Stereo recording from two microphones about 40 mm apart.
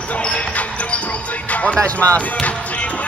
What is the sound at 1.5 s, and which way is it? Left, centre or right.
Music, left.